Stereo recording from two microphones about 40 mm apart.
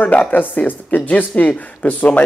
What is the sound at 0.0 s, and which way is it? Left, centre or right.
Speech, left.